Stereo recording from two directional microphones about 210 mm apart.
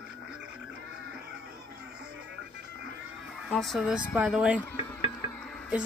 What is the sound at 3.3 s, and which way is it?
Speech, centre (ahead or behind).